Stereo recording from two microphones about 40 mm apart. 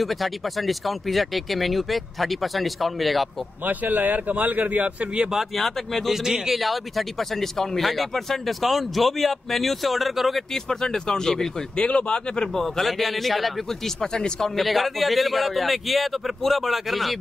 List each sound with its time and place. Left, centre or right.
0.0 s speech: centre
3.6 s a man's voice: right
5.6 s speech: centre
6.1 s a man's voice: centre
6.6 s speech: centre
10.5 s speech: centre
12.6 s speech: centre
14.0 s speech: centre
14.6 s speech: centre